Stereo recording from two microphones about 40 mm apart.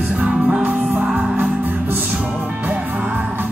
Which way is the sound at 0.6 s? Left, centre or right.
Right.